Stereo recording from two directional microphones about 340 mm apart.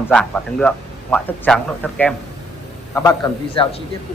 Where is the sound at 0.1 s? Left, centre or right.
Centre.